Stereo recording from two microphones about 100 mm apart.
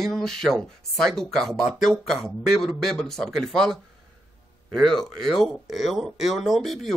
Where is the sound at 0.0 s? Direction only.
5° left (ahead or behind).